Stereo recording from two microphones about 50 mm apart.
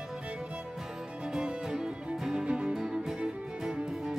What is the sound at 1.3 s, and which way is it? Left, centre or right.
Music, centre.